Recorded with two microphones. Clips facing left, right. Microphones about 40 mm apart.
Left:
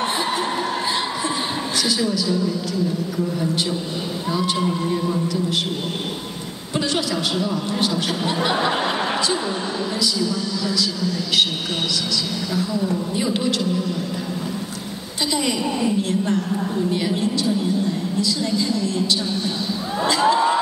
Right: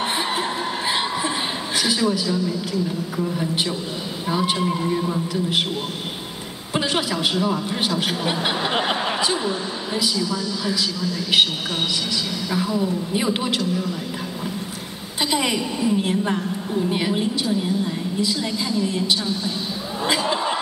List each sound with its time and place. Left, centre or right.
1.8 s a woman's voice: centre
4.6 s a man's voice: centre
6.7 s a sound: right
7.4 s a woman's voice: right
10.3 s a woman's voice: right
12.5 s a woman's voice: right
15.3 s a woman's voice: centre